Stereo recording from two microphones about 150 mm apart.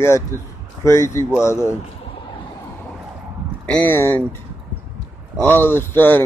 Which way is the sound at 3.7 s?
10° left (ahead or behind).